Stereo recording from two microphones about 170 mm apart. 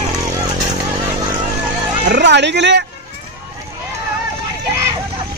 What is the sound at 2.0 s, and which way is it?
Speech, 90° right.